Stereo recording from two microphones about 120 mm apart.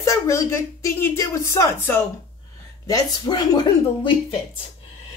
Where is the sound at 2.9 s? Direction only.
35° left (ahead or behind).